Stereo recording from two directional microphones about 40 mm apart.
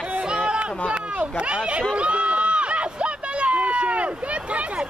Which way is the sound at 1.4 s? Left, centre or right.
Right.